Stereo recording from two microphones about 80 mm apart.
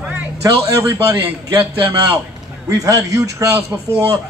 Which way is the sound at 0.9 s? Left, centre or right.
Right.